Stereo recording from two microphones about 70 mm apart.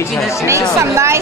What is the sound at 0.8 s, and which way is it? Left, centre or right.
Speech, right.